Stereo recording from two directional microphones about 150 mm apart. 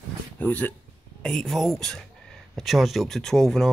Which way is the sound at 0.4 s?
10° left (ahead or behind).